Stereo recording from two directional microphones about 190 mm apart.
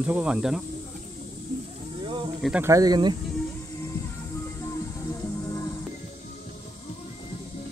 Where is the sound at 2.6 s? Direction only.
20° right (ahead or behind).